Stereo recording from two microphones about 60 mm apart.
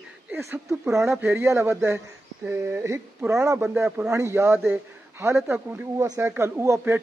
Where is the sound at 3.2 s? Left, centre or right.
Right.